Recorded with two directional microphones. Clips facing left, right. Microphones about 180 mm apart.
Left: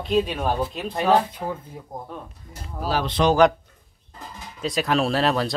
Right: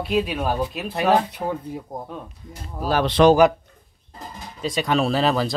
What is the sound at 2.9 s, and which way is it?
Speech, 65° right (ahead or behind).